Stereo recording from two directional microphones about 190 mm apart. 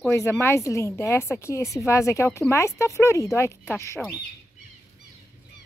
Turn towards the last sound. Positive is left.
turn(degrees=15)  # may be behind; listen again after turning